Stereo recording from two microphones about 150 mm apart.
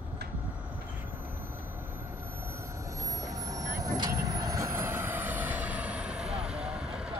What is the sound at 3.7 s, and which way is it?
Vehicle, 25° right (ahead or behind).